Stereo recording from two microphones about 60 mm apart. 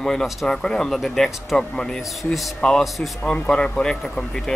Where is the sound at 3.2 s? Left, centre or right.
Centre.